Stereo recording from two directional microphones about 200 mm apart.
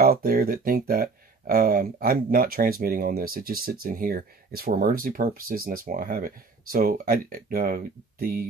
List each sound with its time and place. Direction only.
0.0 s speech: 45° right (ahead or behind)